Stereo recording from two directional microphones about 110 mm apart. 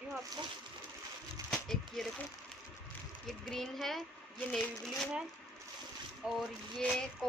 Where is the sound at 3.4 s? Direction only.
Centre (ahead or behind).